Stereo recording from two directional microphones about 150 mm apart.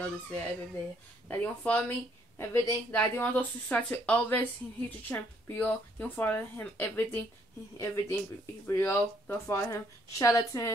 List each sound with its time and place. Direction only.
0.0 s speech: 10° left (ahead or behind)